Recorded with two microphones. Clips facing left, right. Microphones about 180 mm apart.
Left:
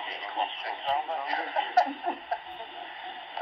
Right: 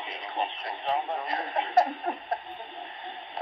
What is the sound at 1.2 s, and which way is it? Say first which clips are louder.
Speech: right 1 dB; 55° right (ahead or behind).